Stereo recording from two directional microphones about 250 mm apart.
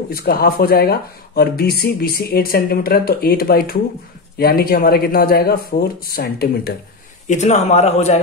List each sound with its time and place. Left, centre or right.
0.1 s a man's voice: left